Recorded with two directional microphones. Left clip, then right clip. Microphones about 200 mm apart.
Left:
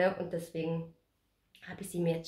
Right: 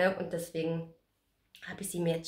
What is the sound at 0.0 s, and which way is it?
A woman's voice, 5° right (ahead or behind).